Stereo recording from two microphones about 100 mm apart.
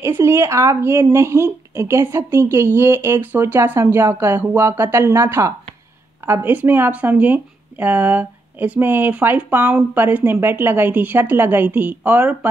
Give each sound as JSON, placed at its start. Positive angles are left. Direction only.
{"t": 0.0, "sound": "speech", "side_deg": -25}